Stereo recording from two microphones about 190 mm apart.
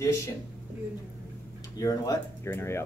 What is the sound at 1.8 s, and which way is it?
Speech, 15° left (ahead or behind).